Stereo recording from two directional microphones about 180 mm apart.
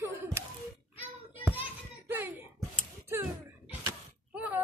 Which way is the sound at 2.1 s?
10° right (ahead or behind).